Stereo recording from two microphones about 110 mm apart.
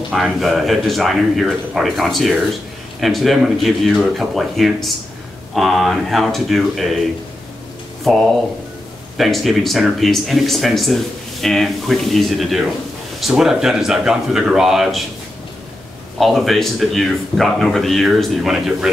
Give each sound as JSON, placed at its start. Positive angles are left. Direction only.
{"t": 0.1, "sound": "a man's voice", "side_deg": 0}
{"t": 8.1, "sound": "a man's voice", "side_deg": 0}
{"t": 16.2, "sound": "a man's voice", "side_deg": 0}